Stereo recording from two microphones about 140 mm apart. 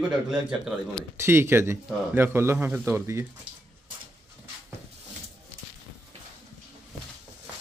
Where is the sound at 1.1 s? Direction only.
15° right (ahead or behind).